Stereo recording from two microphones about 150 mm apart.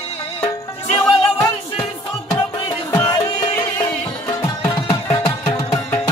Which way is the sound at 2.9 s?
20° left (ahead or behind).